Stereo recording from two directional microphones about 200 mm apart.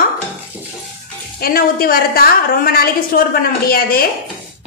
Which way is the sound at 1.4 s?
45° left (ahead or behind).